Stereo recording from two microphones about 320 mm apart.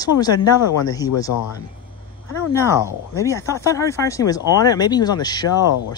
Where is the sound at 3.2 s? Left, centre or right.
Centre.